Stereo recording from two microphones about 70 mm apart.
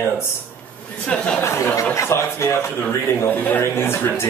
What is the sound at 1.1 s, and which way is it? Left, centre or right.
Speech, centre.